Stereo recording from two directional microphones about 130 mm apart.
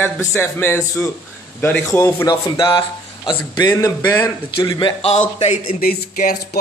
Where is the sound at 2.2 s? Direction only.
30° left (ahead or behind).